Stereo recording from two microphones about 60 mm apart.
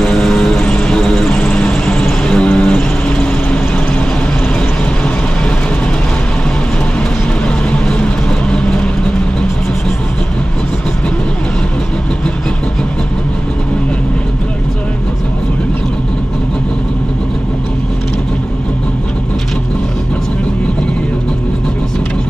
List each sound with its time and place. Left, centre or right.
0.0 s vehicle: centre
7.4 s vehicle: centre